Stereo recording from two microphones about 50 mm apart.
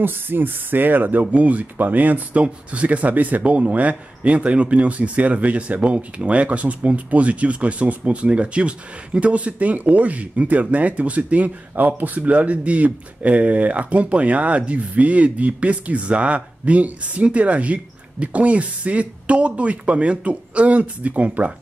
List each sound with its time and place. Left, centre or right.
0.0 s speech: right